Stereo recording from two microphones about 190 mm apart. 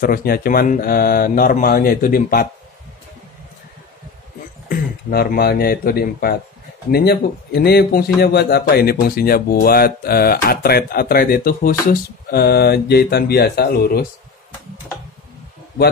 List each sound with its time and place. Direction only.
0.0 s a man's voice: 50° left (ahead or behind)
4.6 s a man's voice: 50° left (ahead or behind)